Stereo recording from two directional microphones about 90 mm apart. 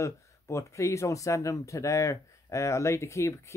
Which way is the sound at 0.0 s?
35° left (ahead or behind).